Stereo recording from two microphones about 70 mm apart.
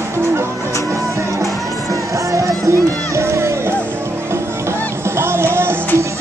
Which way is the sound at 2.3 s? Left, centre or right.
Right.